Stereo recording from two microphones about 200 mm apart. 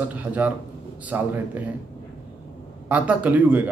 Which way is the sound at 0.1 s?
10° right (ahead or behind).